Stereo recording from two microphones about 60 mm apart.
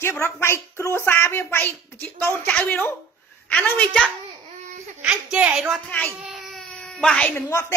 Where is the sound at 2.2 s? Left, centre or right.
Left.